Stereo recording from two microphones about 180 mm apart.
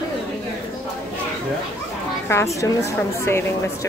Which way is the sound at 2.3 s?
15° left (ahead or behind).